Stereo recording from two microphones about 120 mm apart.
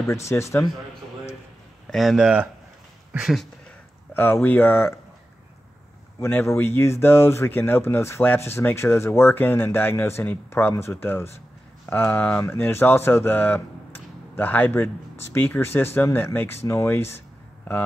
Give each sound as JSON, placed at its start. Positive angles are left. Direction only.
{"t": 0.1, "sound": "speech", "side_deg": 25}
{"t": 1.9, "sound": "speech", "side_deg": 0}
{"t": 4.1, "sound": "speech", "side_deg": 15}
{"t": 6.1, "sound": "speech", "side_deg": 20}